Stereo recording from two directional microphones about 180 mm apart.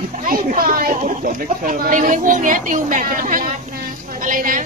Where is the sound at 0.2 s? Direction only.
45° right (ahead or behind).